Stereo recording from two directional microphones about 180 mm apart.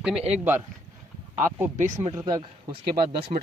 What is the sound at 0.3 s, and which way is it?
Speech, 10° right (ahead or behind).